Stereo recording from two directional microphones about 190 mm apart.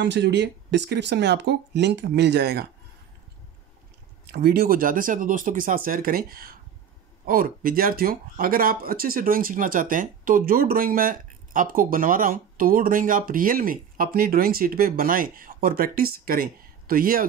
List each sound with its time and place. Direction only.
0.0 s speech: 65° right (ahead or behind)
4.3 s speech: 55° right (ahead or behind)